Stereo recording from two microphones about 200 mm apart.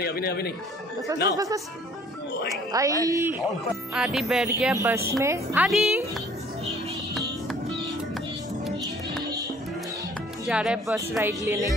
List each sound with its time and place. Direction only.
0.0 s speech: 50° left (ahead or behind)
1.3 s speech: 15° right (ahead or behind); by 4.5 s centre (ahead or behind)
4.7 s speech: 15° right (ahead or behind)
10.4 s speech: 5° right (ahead or behind)